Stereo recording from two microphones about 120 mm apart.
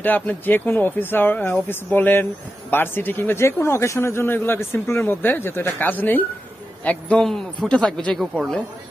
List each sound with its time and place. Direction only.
0.0 s a man's voice: 15° left (ahead or behind)